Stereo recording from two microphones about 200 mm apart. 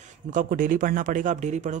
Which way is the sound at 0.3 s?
45° right (ahead or behind).